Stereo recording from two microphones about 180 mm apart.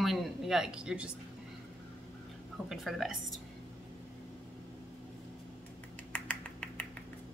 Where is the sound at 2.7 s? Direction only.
Centre (ahead or behind).